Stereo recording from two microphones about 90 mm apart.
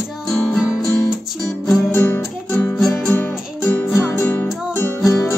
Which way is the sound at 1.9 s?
20° left (ahead or behind).